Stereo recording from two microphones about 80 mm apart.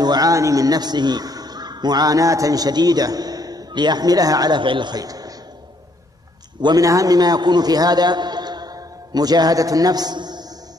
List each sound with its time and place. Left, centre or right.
0.0 s a man's voice: right
0.3 s a man's voice: right
5.0 s a sound: right
6.6 s a man's voice: right